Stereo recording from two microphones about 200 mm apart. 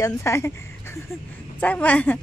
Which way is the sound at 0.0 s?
15° left (ahead or behind).